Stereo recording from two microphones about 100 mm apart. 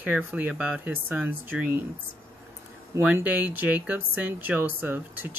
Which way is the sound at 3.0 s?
15° right (ahead or behind).